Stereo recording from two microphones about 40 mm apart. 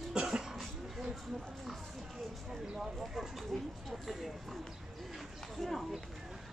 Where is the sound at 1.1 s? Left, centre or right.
Centre.